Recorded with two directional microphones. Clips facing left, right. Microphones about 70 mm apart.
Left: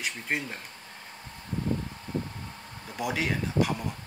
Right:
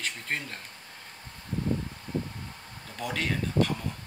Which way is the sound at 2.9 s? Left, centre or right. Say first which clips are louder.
Left 2 dB; centre.